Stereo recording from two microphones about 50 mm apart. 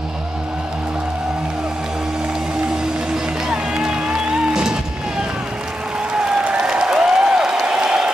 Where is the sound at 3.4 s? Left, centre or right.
Centre.